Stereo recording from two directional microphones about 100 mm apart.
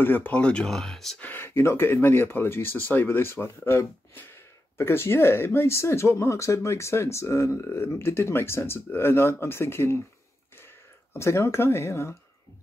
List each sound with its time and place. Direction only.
0.0 s speech: 20° left (ahead or behind); by 1.1 s 5° left (ahead or behind)
1.2 s speech: 20° left (ahead or behind)
11.1 s speech: 30° left (ahead or behind)